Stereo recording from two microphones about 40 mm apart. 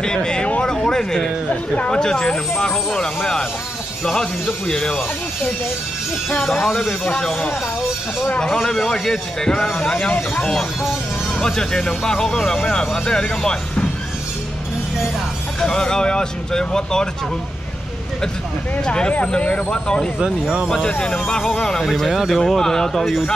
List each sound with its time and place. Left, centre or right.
0.0 s speech: centre
0.7 s a sound: centre
1.9 s speech: centre
6.6 s speech: centre
8.5 s speech: centre
10.8 s vehicle: centre
11.4 s speech: centre
15.6 s speech: centre
18.9 s speech: left
21.9 s speech: centre
22.5 s speech: centre